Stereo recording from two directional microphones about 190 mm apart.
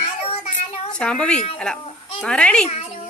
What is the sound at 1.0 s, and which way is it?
A child's voice, 5° left (ahead or behind).